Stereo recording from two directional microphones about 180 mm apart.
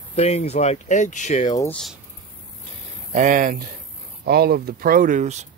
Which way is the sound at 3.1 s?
45° right (ahead or behind).